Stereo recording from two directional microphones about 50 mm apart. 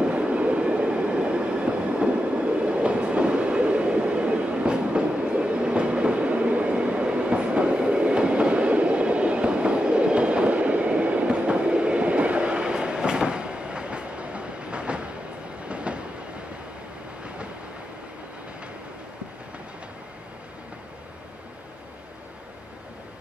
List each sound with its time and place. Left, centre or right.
0.0 s train: right